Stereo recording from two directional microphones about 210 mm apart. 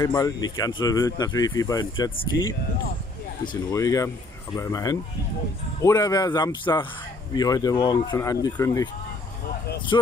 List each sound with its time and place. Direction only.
0.0 s speech: 20° left (ahead or behind)
3.7 s speech: 15° left (ahead or behind)